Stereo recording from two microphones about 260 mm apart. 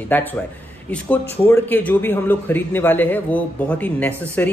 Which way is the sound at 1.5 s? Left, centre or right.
Centre.